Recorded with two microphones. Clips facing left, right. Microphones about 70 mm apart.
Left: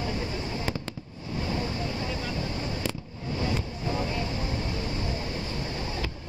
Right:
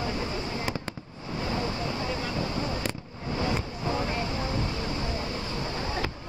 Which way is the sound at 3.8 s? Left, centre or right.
Right.